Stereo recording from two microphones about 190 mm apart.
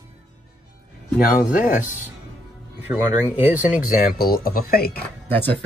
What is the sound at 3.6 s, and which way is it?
Speech, 45° left (ahead or behind).